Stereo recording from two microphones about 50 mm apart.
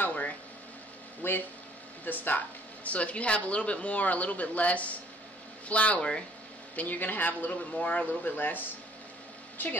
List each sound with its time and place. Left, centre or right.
0.0 s a sound: left
1.2 s speech: left; by 6.2 s centre
6.7 s speech: left